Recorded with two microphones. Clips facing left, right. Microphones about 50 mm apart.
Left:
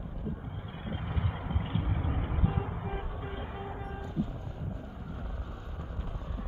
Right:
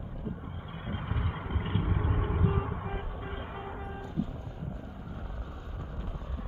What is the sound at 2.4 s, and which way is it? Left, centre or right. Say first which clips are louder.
Music: right 2 dB; right.